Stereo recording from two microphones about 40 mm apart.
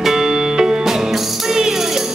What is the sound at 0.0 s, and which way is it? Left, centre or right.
Music, centre.